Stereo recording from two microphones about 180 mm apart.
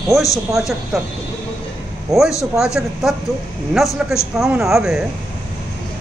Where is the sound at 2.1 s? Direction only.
20° right (ahead or behind).